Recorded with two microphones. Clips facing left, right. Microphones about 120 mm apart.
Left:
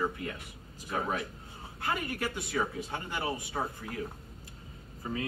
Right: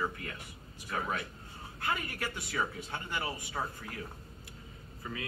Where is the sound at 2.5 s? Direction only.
10° left (ahead or behind).